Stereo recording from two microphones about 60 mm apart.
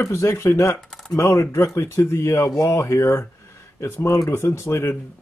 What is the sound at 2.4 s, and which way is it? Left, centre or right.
Speech, left.